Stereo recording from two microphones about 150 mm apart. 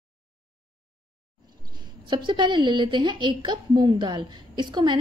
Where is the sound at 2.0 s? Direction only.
30° right (ahead or behind).